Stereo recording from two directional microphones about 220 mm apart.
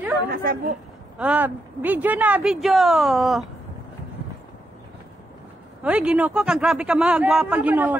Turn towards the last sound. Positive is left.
turn(degrees=-10)  # may be behind; listen again after turning